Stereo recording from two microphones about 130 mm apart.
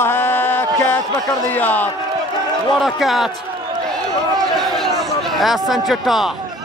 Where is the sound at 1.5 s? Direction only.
15° left (ahead or behind).